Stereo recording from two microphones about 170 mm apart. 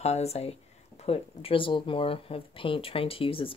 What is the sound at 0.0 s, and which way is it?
Speech, 40° left (ahead or behind).